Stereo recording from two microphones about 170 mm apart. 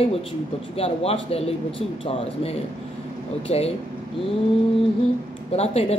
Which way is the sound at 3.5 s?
35° left (ahead or behind).